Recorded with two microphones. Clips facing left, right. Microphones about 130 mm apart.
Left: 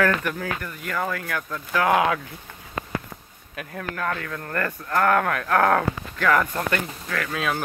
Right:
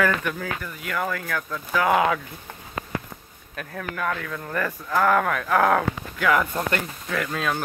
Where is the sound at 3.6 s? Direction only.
Centre (ahead or behind).